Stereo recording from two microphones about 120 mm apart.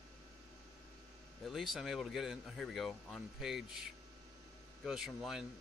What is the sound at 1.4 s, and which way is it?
Speech, centre (ahead or behind).